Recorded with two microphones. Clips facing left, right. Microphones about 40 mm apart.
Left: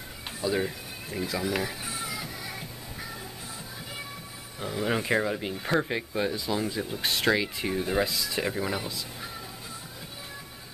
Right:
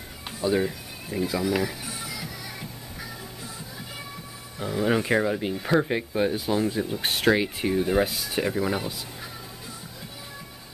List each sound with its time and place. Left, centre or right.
0.6 s speech: centre
2.0 s music: left
4.6 s speech: centre
8.0 s speech: centre
8.4 s speech: centre